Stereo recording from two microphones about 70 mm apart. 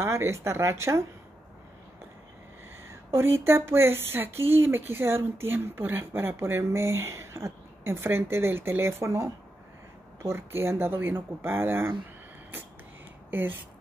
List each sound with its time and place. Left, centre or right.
0.0 s speech: right
2.9 s speech: right
13.3 s speech: right